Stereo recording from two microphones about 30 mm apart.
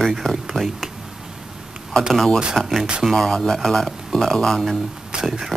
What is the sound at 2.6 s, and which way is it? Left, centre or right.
Speech, centre.